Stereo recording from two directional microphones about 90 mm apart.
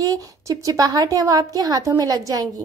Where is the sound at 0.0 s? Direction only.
40° right (ahead or behind).